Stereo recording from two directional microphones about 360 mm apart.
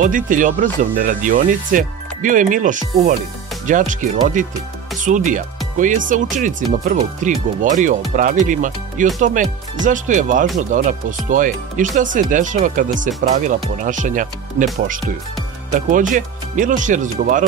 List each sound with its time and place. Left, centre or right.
0.0 s speech: right